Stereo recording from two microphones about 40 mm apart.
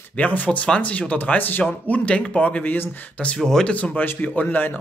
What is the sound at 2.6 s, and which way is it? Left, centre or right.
Speech, left.